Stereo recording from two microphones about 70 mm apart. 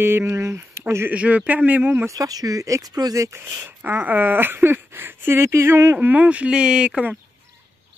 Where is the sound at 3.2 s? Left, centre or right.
Right.